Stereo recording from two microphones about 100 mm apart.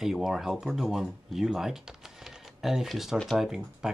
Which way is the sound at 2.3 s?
5° right (ahead or behind).